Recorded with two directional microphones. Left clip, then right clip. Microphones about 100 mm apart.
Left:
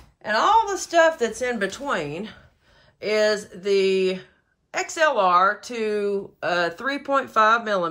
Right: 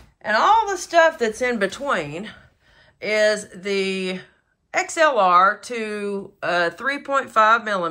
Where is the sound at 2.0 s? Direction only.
50° left (ahead or behind).